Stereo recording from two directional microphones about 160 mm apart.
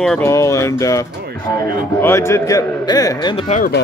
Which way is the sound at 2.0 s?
15° left (ahead or behind).